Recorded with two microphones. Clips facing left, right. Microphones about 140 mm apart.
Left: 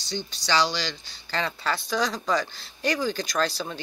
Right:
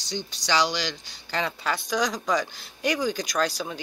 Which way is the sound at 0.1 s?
15° right (ahead or behind).